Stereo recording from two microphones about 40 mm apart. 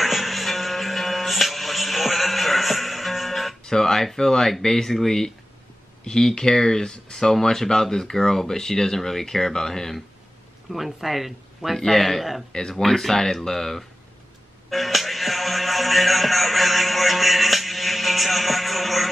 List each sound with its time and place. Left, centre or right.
0.0 s music: centre
3.6 s speech: centre
10.7 s speech: centre
12.5 s speech: centre
14.7 s music: centre